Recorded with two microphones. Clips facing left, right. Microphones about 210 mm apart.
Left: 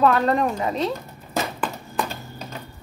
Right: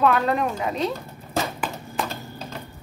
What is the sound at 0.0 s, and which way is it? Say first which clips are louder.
Speech: left 2 dB; centre (ahead or behind).